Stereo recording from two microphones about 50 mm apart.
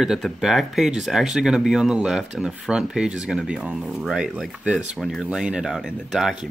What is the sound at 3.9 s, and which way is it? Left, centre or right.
Speech, centre.